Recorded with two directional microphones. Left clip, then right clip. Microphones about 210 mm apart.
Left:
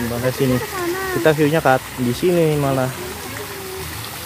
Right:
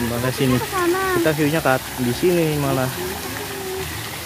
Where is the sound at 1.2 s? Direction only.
15° left (ahead or behind).